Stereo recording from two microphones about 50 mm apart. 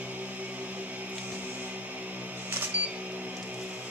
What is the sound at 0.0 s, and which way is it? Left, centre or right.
Music, right.